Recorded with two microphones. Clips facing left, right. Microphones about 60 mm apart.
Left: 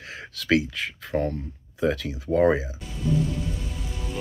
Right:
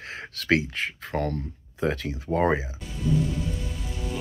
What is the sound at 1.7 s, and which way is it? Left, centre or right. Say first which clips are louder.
Speech: left 2 dB; right.